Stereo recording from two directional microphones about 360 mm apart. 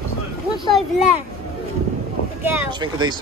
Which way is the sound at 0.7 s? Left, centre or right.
Centre.